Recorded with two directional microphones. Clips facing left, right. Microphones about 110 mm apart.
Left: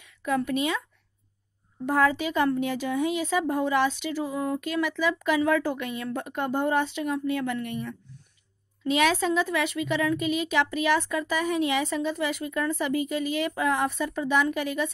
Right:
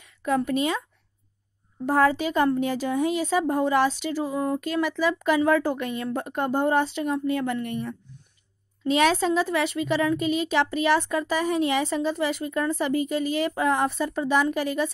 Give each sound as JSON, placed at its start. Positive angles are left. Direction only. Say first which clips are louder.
{"t": 0.0, "sound": "a sound", "louder": "right 2 dB", "side_deg": -35}
{"t": 0.5, "sound": "a woman's voice", "louder": "right 2 dB", "side_deg": -35}
{"t": 1.9, "sound": "a woman's voice", "louder": "right 2 dB", "side_deg": -40}